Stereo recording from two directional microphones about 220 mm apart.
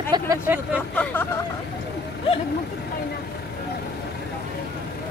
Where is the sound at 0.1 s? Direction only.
15° right (ahead or behind).